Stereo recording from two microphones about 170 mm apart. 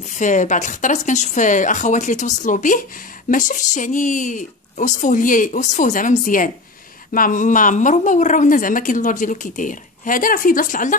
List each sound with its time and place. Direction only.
0.0 s a woman's voice: 45° left (ahead or behind)